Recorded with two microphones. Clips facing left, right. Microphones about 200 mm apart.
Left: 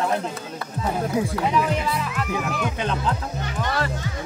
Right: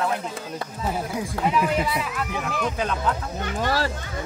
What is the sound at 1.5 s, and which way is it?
Speech, 10° right (ahead or behind).